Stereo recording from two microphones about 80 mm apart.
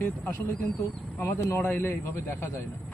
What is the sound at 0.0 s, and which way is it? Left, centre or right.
Speech, left.